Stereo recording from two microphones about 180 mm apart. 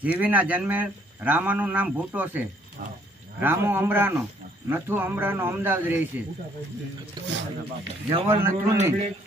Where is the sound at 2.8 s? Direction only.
55° right (ahead or behind).